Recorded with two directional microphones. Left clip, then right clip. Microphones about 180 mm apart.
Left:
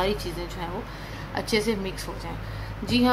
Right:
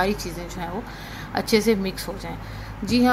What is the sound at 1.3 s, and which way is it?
A woman's voice, 20° right (ahead or behind).